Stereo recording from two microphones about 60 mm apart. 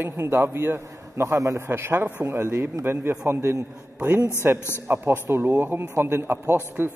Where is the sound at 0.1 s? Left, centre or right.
Right.